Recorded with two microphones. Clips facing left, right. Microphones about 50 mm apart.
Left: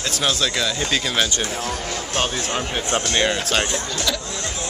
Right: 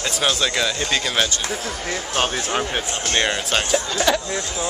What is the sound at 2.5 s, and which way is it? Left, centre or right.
Speech, centre.